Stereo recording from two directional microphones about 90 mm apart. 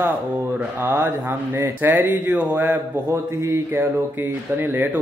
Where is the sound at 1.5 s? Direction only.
25° right (ahead or behind).